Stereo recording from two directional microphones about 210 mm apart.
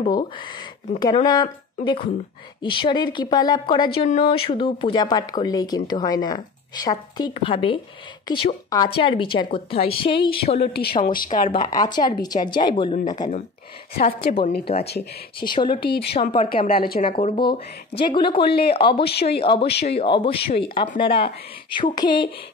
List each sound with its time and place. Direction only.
0.0 s speech: 25° left (ahead or behind)
10.6 s a woman's voice: 50° left (ahead or behind)
11.6 s speech: 20° left (ahead or behind)
13.9 s speech: 45° left (ahead or behind)
14.7 s speech: 30° left (ahead or behind)
16.3 s a woman's voice: 40° left (ahead or behind)
17.0 s speech: 25° left (ahead or behind)
18.4 s speech: 50° left (ahead or behind)
18.7 s speech: 25° left (ahead or behind)